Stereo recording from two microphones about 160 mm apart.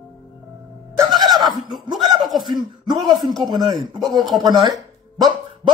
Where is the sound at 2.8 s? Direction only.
25° right (ahead or behind).